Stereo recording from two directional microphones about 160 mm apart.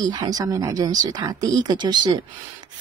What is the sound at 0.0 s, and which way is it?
Speech, 25° right (ahead or behind).